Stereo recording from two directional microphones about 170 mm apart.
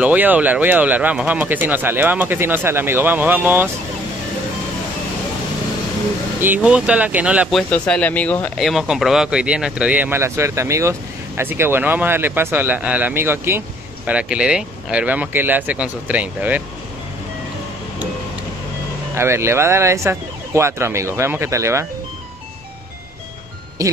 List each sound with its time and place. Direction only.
0.0 s speech: 10° right (ahead or behind)
6.4 s speech: 10° right (ahead or behind)
7.7 s speech: 5° left (ahead or behind)
19.1 s speech: 15° right (ahead or behind)
23.8 s speech: 20° right (ahead or behind)